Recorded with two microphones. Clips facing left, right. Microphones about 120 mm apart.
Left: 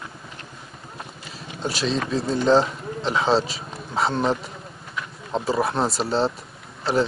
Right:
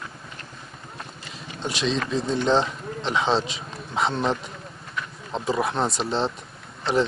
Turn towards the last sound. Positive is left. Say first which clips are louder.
# left 1 dB
turn(degrees=5)  # may be behind; listen again after turning